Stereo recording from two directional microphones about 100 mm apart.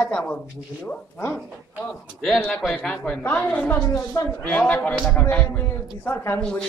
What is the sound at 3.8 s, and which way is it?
Speech, 30° left (ahead or behind).